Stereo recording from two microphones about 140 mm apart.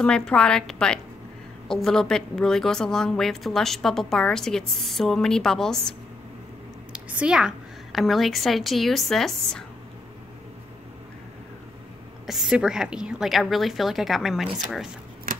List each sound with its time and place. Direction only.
0.0 s a woman's voice: 5° left (ahead or behind)
6.9 s a woman's voice: 10° right (ahead or behind)
12.3 s a woman's voice: 5° right (ahead or behind)
15.3 s typewriter: 85° right